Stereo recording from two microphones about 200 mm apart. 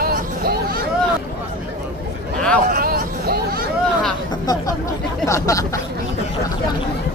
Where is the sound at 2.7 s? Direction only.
50° right (ahead or behind).